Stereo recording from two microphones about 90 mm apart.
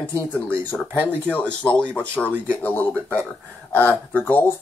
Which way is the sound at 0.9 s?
25° right (ahead or behind).